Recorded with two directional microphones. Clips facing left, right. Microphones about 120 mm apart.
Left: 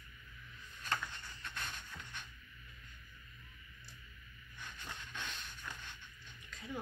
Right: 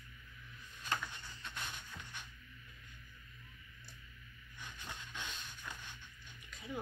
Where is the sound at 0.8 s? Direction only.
10° right (ahead or behind).